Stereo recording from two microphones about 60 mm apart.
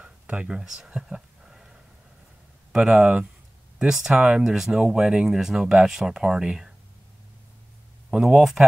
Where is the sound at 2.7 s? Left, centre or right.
Centre.